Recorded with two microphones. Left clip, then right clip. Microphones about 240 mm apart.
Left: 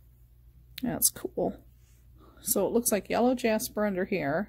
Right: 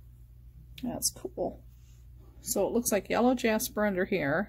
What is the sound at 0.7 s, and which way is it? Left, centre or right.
Speech, left.